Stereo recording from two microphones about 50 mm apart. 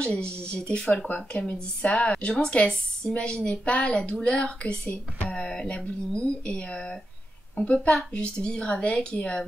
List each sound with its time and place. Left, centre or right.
0.0 s a woman's voice: left
4.8 s speech: left
5.3 s a woman's voice: centre